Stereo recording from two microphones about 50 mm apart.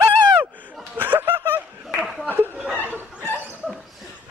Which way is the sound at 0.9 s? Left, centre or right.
Right.